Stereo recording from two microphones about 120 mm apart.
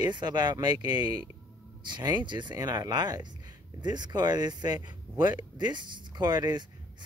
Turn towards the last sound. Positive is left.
turn(degrees=-35)  # may be behind; listen again after turning